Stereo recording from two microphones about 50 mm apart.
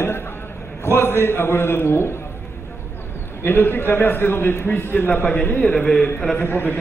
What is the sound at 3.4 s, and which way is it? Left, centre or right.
A man's voice, left.